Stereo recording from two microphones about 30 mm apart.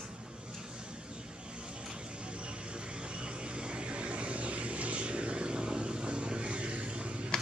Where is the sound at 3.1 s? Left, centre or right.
Right.